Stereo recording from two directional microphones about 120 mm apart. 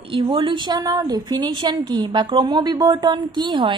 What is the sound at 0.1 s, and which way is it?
A woman's voice, 50° right (ahead or behind).